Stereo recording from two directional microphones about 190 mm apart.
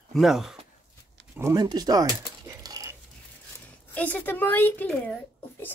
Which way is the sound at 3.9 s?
10° left (ahead or behind).